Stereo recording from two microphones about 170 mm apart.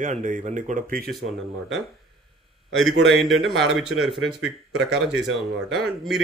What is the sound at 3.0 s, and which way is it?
A man's voice, centre (ahead or behind).